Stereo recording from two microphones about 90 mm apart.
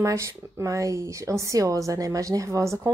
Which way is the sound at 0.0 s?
35° right (ahead or behind).